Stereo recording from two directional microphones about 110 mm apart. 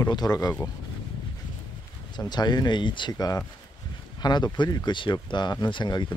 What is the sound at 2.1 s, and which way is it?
Speech, 40° left (ahead or behind).